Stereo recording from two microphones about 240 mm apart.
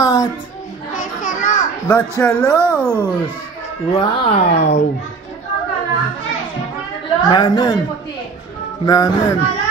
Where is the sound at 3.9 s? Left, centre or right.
Left.